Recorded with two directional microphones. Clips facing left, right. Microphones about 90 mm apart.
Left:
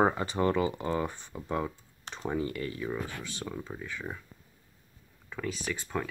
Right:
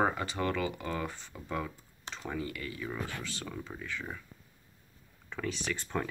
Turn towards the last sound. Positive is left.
turn(degrees=5)  # may be behind; listen again after turning